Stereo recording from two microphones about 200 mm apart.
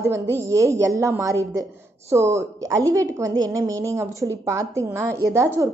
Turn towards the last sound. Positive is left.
turn(degrees=-15)  # may be behind; listen again after turning